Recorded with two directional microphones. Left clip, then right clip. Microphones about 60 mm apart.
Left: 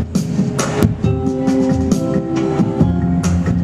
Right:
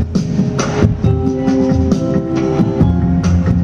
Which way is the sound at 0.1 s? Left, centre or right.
Left.